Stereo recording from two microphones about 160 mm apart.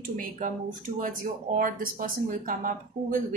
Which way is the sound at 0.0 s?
60° right (ahead or behind).